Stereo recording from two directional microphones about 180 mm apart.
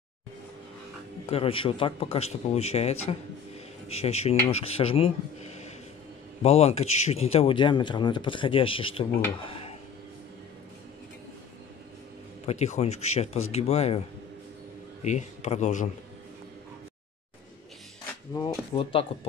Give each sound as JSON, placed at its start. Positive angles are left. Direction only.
{"t": 1.3, "sound": "speech", "side_deg": 30}
{"t": 6.4, "sound": "speech", "side_deg": 35}
{"t": 12.4, "sound": "speech", "side_deg": 40}
{"t": 18.8, "sound": "speech", "side_deg": 30}